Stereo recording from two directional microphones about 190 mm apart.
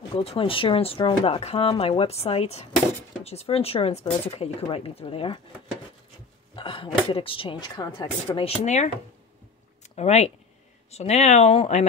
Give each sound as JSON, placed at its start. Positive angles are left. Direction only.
{"t": 0.1, "sound": "speech", "side_deg": 30}
{"t": 6.5, "sound": "a woman's voice", "side_deg": 25}
{"t": 9.9, "sound": "speech", "side_deg": 35}